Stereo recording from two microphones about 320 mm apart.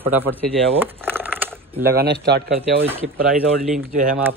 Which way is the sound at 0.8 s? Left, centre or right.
Centre.